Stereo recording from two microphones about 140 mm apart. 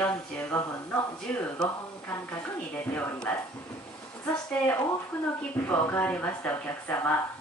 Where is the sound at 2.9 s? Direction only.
10° left (ahead or behind).